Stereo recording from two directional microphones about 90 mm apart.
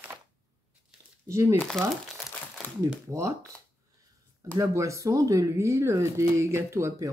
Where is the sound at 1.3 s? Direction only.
35° right (ahead or behind).